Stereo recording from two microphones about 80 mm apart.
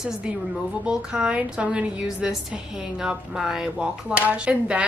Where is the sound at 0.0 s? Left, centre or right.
Centre.